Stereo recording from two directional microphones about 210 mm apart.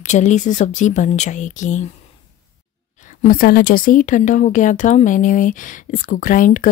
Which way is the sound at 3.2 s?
45° left (ahead or behind).